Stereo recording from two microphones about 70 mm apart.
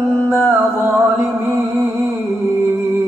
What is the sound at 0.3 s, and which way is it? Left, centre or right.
Music, right.